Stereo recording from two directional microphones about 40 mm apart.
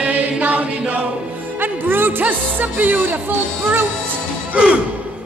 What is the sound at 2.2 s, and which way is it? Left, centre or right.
Music, right.